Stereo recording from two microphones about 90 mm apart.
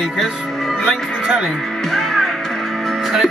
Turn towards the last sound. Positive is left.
turn(degrees=0)  # may be behind; listen again after turning